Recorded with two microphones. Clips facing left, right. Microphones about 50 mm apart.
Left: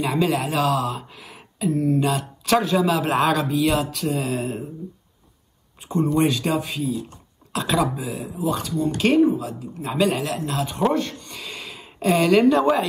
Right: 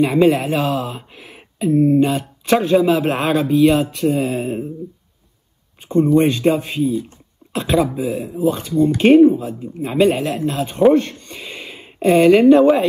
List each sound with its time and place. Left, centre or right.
0.0 s speech: right
6.1 s speech: right
10.2 s speech: centre
10.8 s a sound: right
12.2 s speech: right